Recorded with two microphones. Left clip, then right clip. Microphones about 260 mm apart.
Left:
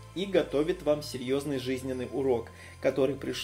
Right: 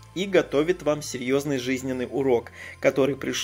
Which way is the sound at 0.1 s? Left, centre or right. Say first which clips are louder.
Right 5 dB; right.